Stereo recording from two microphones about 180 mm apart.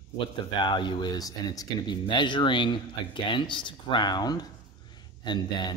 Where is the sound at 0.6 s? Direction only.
25° left (ahead or behind).